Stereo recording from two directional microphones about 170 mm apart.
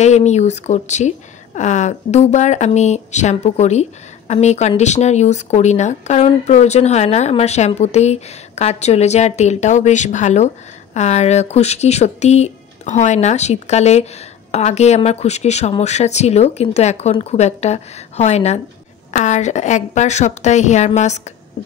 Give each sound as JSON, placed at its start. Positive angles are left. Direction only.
{"t": 0.0, "sound": "a woman's voice", "side_deg": 40}